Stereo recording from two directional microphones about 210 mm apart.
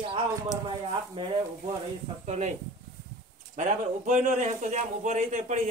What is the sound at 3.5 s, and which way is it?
Speech, 35° right (ahead or behind).